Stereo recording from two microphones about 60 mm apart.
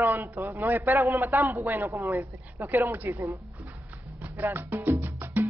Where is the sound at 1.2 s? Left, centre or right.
Right.